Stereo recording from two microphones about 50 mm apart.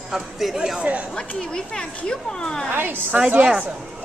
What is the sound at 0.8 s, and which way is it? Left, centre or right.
Speech, right.